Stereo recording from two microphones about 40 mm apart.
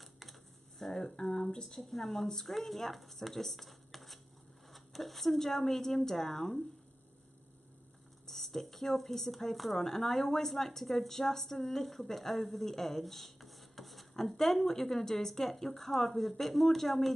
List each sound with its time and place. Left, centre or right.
0.0 s computer keyboard: centre
1.0 s speech: centre
1.8 s speech: centre
8.3 s speech: centre